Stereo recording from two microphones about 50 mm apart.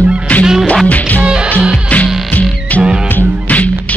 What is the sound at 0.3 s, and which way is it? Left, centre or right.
Music, left.